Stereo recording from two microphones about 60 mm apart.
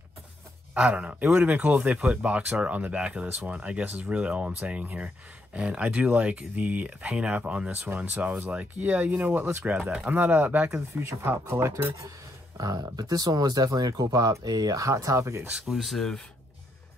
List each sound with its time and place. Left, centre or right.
0.7 s speech: centre
4.8 s speech: right
9.6 s speech: right
11.0 s speech: right
12.5 s speech: right
15.5 s speech: centre